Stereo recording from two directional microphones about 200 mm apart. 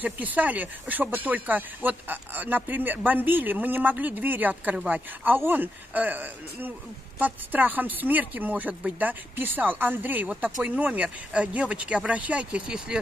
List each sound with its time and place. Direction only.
0.0 s speech: 10° right (ahead or behind)